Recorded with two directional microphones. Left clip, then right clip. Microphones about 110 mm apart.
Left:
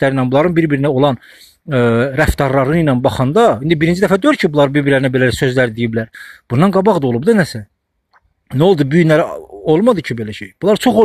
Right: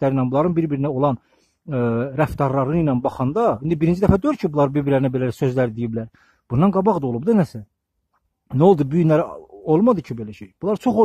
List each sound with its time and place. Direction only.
0.0 s speech: 10° right (ahead or behind)
7.0 s speech: 10° right (ahead or behind)